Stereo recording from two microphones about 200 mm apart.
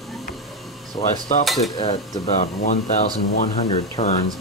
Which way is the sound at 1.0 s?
35° left (ahead or behind).